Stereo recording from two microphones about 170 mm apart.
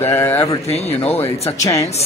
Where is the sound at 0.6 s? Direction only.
40° left (ahead or behind).